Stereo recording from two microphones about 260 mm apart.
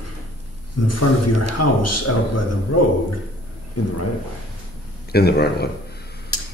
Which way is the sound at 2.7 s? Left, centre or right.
Left.